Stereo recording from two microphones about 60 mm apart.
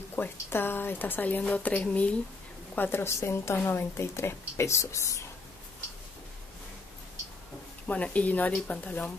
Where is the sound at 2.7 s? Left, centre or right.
Left.